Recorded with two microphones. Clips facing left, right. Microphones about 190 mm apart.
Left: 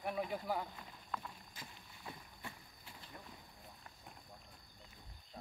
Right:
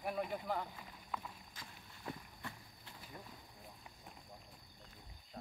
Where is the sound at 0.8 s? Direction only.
5° right (ahead or behind).